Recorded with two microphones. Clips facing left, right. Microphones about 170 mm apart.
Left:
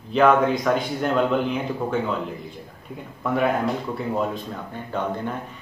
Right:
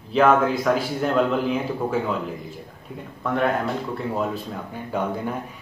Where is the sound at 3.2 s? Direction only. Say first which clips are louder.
Left 1 dB; 5° left (ahead or behind).